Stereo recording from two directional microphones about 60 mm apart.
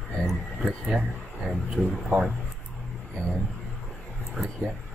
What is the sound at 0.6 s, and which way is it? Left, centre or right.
Speech, centre.